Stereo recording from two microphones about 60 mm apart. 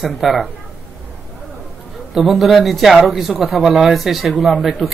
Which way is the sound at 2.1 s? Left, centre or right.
Centre.